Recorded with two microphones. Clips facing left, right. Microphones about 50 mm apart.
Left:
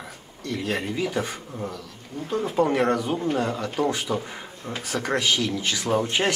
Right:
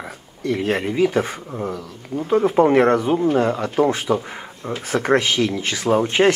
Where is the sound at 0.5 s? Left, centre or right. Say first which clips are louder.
Right 7 dB; right.